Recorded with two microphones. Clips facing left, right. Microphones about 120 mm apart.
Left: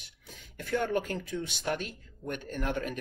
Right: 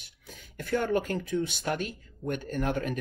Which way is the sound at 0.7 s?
45° right (ahead or behind).